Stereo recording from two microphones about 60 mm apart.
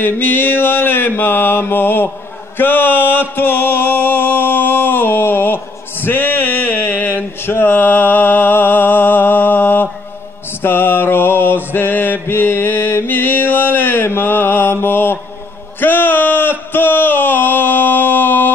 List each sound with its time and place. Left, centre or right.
0.0 s mantra: left
2.5 s music: left
10.6 s mantra: left
15.8 s a sound: left